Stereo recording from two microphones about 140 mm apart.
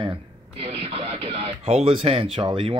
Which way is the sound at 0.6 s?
40° right (ahead or behind).